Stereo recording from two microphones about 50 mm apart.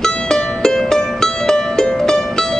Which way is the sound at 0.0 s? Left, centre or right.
Centre.